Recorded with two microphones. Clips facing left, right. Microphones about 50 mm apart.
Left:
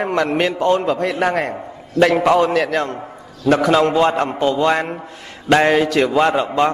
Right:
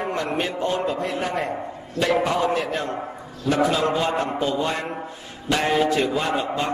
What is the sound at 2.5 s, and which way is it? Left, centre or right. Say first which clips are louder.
A man's voice: left 6 dB; left.